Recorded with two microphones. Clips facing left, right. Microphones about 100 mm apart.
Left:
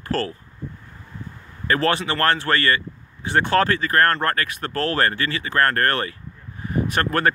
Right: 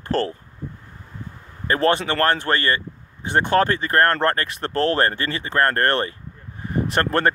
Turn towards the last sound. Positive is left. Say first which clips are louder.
# right 1 dB
turn(degrees=-30)  # may be behind; listen again after turning